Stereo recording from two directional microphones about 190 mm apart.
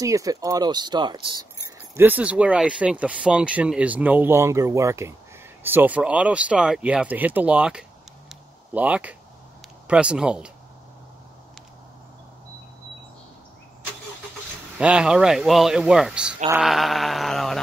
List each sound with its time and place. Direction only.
0.0 s speech: 15° right (ahead or behind)
2.0 s speech: 10° right (ahead or behind)
8.3 s a sound: 5° right (ahead or behind)
9.8 s a man's voice: 5° right (ahead or behind)
14.8 s a man's voice: 5° right (ahead or behind)